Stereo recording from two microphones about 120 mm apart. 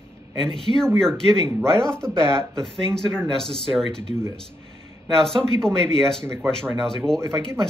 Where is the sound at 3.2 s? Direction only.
5° left (ahead or behind).